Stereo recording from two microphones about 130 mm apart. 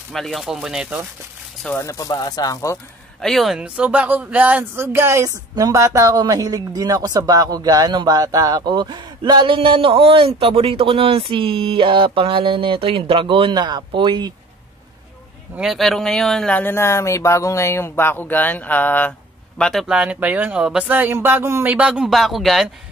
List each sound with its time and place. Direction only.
0.1 s speech: centre (ahead or behind)
1.8 s speech: 25° left (ahead or behind)
3.2 s speech: centre (ahead or behind); by 14.3 s 35° right (ahead or behind)
15.5 s speech: 5° right (ahead or behind); by 19.1 s 15° left (ahead or behind)
19.6 s speech: centre (ahead or behind); by 21.7 s 20° right (ahead or behind)
21.7 s speech: 5° right (ahead or behind)